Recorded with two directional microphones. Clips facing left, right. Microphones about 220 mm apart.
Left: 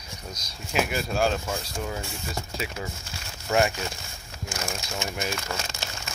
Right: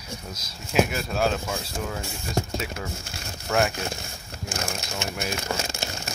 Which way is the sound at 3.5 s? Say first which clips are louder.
Left 1 dB; centre (ahead or behind).